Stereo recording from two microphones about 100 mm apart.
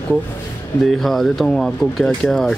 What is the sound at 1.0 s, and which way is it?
Speech, centre (ahead or behind).